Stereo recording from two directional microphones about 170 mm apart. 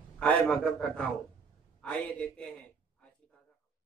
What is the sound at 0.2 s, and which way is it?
A man's voice, 5° left (ahead or behind).